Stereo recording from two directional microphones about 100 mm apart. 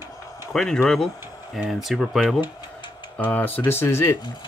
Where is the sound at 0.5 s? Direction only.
5° left (ahead or behind).